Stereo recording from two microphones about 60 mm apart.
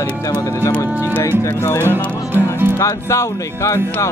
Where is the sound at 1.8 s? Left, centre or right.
Right.